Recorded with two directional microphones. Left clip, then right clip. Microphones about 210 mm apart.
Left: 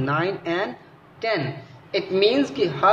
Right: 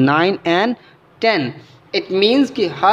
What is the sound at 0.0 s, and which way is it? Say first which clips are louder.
A woman's voice: right 9 dB; 50° right (ahead or behind).